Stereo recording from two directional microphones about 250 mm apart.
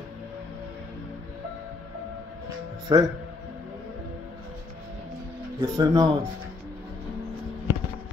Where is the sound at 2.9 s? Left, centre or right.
Centre.